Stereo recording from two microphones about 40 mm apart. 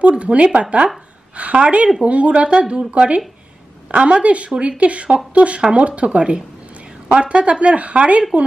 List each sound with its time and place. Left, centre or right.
0.0 s speech: right